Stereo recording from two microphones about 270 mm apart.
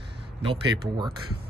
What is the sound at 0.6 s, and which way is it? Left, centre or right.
Speech, centre.